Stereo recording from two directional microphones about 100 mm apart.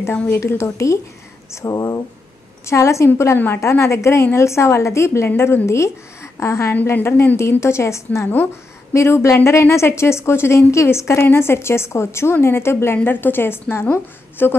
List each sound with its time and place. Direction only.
0.3 s a woman's voice: 25° left (ahead or behind)